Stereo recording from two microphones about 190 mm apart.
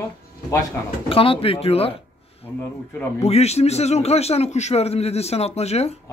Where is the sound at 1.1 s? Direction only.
30° left (ahead or behind).